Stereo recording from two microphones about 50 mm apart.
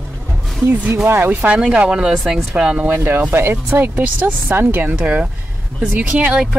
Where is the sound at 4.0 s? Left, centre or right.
Right.